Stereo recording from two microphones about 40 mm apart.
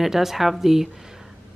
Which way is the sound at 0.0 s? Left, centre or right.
Centre.